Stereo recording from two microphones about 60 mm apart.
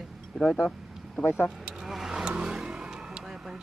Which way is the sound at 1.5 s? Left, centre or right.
Centre.